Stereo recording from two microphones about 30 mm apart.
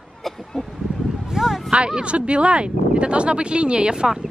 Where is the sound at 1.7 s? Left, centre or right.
Right.